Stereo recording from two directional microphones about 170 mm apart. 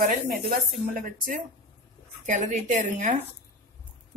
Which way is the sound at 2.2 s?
45° right (ahead or behind).